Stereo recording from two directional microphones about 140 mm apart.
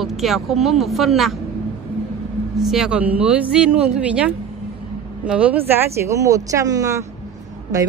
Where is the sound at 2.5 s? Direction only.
5° right (ahead or behind); by 7.0 s 25° right (ahead or behind).